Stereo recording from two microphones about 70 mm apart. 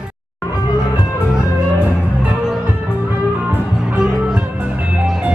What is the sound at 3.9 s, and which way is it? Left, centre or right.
Music, centre.